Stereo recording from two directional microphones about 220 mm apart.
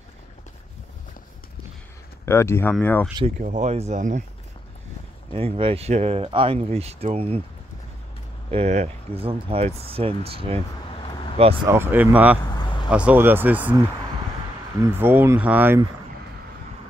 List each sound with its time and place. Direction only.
2.2 s speech: 10° left (ahead or behind)
3.3 s speech: 35° right (ahead or behind)
5.3 s speech: 25° right (ahead or behind)
8.5 s speech: 30° right (ahead or behind)
11.7 s speech: 10° right (ahead or behind)
12.4 s vehicle: 20° left (ahead or behind)
12.9 s speech: 5° right (ahead or behind)
14.8 s speech: 10° right (ahead or behind)